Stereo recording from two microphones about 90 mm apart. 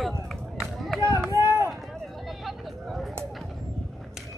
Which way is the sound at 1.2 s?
25° right (ahead or behind).